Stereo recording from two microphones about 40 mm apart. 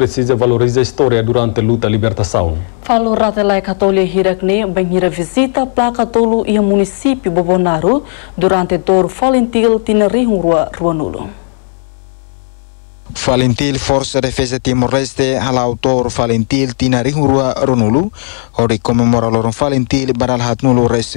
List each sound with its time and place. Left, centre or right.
0.0 s speech: centre
13.1 s speech: centre